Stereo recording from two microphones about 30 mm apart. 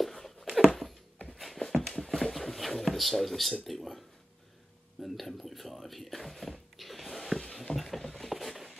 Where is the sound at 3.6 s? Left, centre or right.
Centre.